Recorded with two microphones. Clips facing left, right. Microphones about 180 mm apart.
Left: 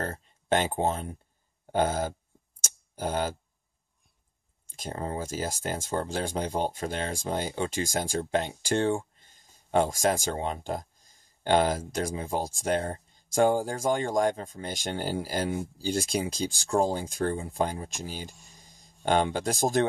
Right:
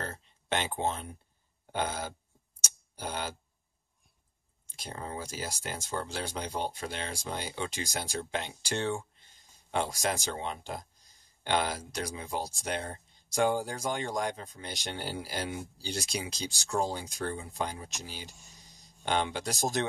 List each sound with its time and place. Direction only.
0.0 s speech: 45° left (ahead or behind)
2.6 s tick: 45° left (ahead or behind)
4.7 s speech: 45° left (ahead or behind)